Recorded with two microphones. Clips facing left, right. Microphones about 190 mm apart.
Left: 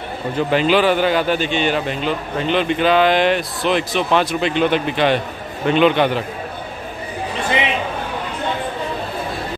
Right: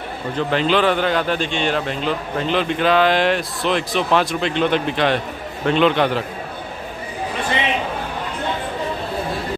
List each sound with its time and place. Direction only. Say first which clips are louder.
0.4 s speech: left 2 dB; 10° left (ahead or behind)